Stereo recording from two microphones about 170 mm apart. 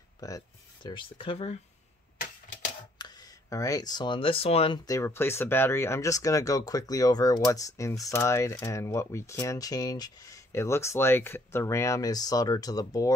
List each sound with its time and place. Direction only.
0.2 s speech: 20° left (ahead or behind)
3.0 s speech: 20° left (ahead or behind)
4.8 s speech: 15° left (ahead or behind)